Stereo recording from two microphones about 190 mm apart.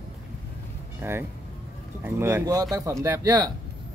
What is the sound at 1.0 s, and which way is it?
Speech, 10° right (ahead or behind).